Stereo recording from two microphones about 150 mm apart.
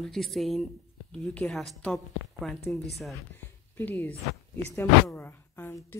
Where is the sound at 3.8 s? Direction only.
15° left (ahead or behind).